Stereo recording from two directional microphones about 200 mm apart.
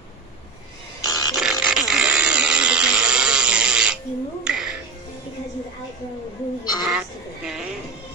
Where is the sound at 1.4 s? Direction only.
5° right (ahead or behind).